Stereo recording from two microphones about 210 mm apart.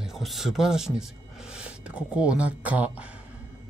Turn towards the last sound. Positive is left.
turn(degrees=-5)  # may be behind; listen again after turning